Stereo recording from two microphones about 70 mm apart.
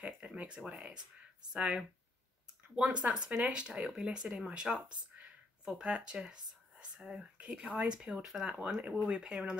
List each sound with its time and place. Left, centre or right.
0.0 s speech: centre